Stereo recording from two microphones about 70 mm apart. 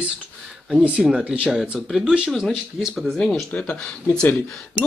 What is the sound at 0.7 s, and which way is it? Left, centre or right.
Speech, centre.